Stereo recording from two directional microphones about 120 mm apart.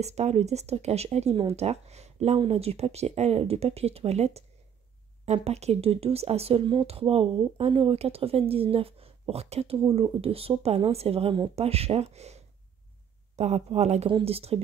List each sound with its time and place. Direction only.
0.0 s speech: 65° right (ahead or behind)
1.3 s speech: 45° right (ahead or behind)
1.6 s speech: 65° right (ahead or behind)
13.4 s speech: 65° right (ahead or behind)
14.0 s speech: 50° right (ahead or behind)